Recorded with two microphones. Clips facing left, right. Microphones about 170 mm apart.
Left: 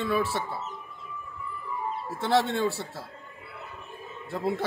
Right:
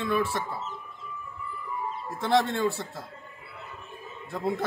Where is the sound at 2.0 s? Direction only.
Centre (ahead or behind).